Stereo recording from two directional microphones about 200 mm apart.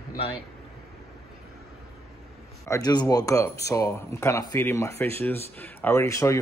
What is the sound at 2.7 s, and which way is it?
Speech, 20° left (ahead or behind).